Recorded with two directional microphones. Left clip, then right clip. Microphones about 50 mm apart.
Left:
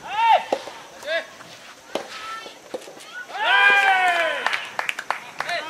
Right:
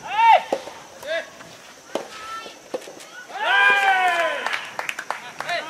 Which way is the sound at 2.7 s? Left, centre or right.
Right.